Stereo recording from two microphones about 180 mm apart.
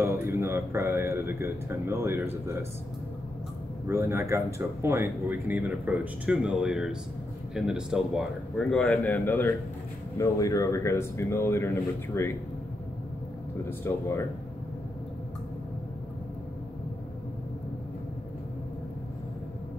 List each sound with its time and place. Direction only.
0.4 s speech: 15° right (ahead or behind)
3.8 s speech: 15° right (ahead or behind); by 12.3 s 15° left (ahead or behind)
13.7 s speech: 15° left (ahead or behind)